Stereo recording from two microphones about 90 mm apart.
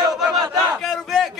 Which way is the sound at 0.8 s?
Centre (ahead or behind).